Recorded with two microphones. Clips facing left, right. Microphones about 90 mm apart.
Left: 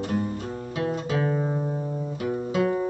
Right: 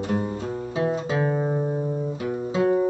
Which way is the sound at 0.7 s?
25° right (ahead or behind).